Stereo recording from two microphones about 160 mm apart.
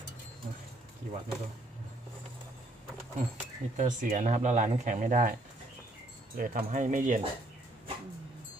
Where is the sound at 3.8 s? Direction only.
55° right (ahead or behind).